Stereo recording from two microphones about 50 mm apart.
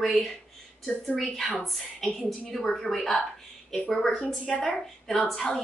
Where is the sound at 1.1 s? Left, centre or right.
Centre.